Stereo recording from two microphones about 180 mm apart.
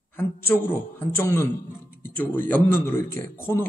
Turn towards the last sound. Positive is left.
turn(degrees=10)  # may be behind; listen again after turning